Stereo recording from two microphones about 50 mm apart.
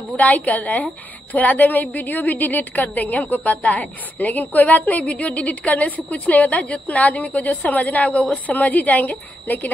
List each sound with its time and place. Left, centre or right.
0.1 s a woman's voice: left